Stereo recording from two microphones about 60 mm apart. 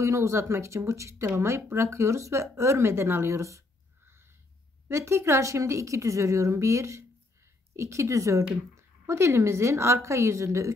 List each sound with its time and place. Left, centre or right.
0.0 s speech: right
4.8 s a woman's voice: right